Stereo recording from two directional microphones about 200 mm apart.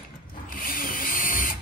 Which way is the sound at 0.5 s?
45° left (ahead or behind).